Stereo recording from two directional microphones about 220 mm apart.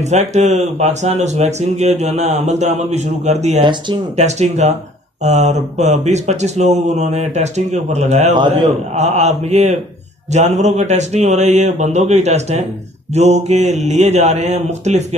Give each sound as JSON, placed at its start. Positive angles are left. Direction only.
{"t": 0.0, "sound": "speech", "side_deg": -30}